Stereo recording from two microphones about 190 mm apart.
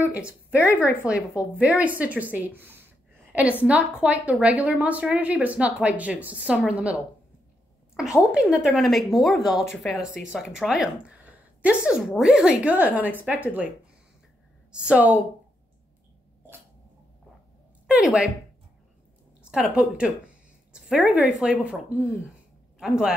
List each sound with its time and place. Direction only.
0.1 s a woman's voice: 5° right (ahead or behind)
14.7 s a woman's voice: 5° right (ahead or behind)
17.8 s speech: 5° right (ahead or behind)
19.5 s a woman's voice: 5° right (ahead or behind)